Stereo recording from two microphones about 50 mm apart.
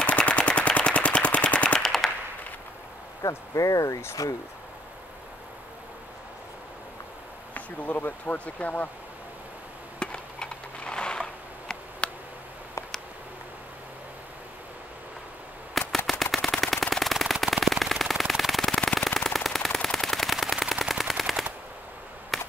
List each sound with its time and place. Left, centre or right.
0.0 s machine gun: left
1.8 s machine gun: centre
3.2 s speech: left
3.5 s speech: left
7.5 s speech: left
9.9 s a sound: centre
15.8 s machine gun: centre
18.6 s machine gun: centre
22.3 s a sound: centre